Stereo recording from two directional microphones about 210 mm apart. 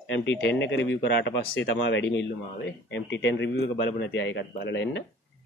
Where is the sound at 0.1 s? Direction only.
60° left (ahead or behind).